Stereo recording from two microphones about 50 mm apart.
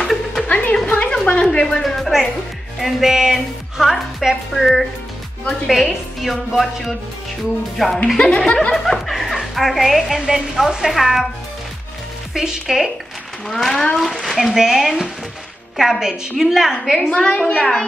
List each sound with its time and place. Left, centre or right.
0.0 s music: centre
0.5 s a sound: left
0.8 s a sound: centre
1.5 s music: left
1.8 s music: centre
2.8 s a woman's voice: centre
6.2 s a woman's voice: centre
8.2 s a woman's voice: centre
8.7 s a woman's voice: centre
12.4 s a woman's voice: centre
13.5 s a woman's voice: centre
17.1 s a woman's voice: centre